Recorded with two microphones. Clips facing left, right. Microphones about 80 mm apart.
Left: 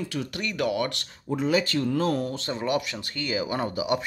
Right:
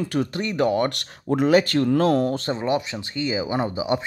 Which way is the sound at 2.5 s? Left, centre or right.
Right.